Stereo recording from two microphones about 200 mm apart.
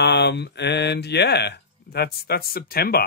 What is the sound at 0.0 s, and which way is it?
Speech, 55° left (ahead or behind).